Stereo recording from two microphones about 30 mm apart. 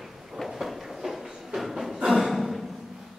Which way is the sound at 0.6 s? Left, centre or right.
Centre.